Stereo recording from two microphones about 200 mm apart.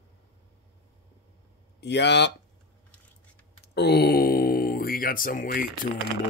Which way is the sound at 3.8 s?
55° left (ahead or behind).